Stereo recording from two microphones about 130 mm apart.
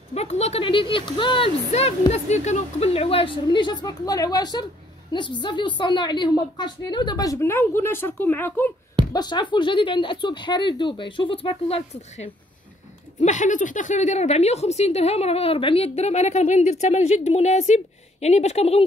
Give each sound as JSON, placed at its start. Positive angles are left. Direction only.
{"t": 0.1, "sound": "a woman's voice", "side_deg": 55}
{"t": 1.7, "sound": "a woman's voice", "side_deg": 55}
{"t": 9.1, "sound": "a woman's voice", "side_deg": 35}
{"t": 13.2, "sound": "a woman's voice", "side_deg": 70}